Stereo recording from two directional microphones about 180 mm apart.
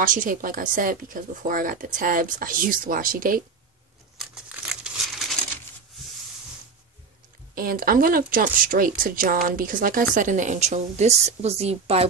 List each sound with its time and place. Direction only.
0.0 s speech: 45° right (ahead or behind)
4.2 s crumpling: centre (ahead or behind)
7.5 s speech: 55° right (ahead or behind); by 12.1 s 35° right (ahead or behind)